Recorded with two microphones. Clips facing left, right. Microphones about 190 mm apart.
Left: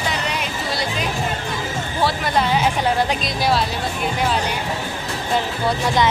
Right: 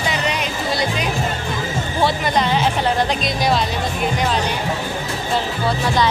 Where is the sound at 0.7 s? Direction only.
Centre (ahead or behind).